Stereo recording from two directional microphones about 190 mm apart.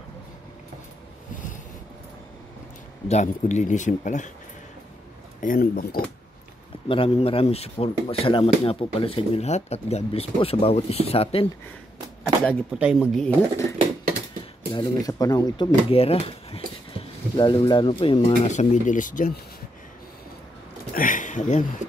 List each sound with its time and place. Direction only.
3.1 s speech: 40° left (ahead or behind)
5.4 s speech: 50° left (ahead or behind)
6.9 s speech: 30° left (ahead or behind)
12.7 s speech: 5° right (ahead or behind)
13.2 s speech: 10° left (ahead or behind)
14.7 s speech: 20° left (ahead or behind); by 19.4 s 45° left (ahead or behind)
20.9 s speech: 45° left (ahead or behind)